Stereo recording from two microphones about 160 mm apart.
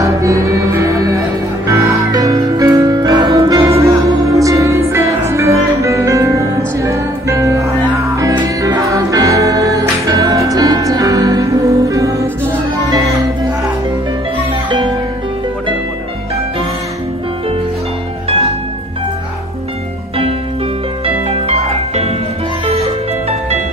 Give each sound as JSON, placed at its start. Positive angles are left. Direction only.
{"t": 0.0, "sound": "music", "side_deg": -20}
{"t": 14.7, "sound": "music", "side_deg": -30}
{"t": 21.3, "sound": "music", "side_deg": -40}